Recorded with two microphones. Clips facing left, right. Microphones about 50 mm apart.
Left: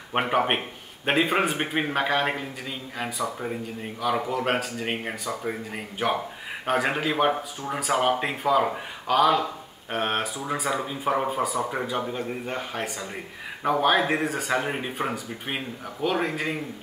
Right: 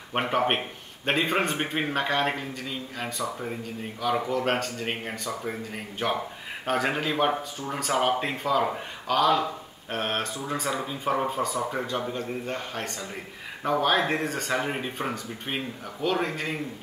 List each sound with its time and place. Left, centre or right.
0.1 s speech: centre